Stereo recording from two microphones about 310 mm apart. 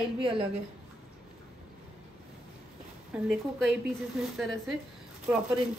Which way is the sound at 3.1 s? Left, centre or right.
Centre.